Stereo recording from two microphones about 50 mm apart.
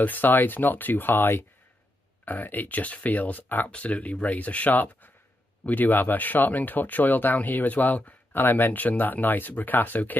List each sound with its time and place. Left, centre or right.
0.0 s speech: left